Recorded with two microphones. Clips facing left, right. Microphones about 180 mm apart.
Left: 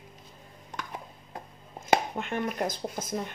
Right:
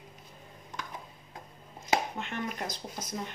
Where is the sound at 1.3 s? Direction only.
55° left (ahead or behind).